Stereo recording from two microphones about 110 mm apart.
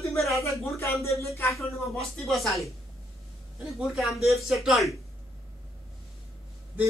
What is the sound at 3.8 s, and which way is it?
Speech, centre (ahead or behind).